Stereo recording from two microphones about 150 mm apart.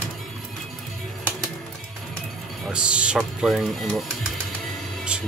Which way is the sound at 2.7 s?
5° right (ahead or behind).